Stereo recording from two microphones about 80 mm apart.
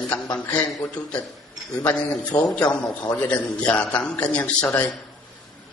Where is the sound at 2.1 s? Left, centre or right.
Left.